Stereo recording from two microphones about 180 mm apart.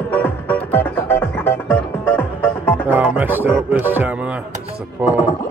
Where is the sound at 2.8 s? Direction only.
10° right (ahead or behind).